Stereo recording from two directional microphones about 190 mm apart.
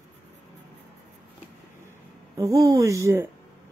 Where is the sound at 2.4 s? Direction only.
15° right (ahead or behind).